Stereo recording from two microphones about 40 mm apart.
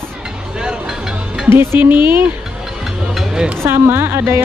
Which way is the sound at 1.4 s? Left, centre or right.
Right.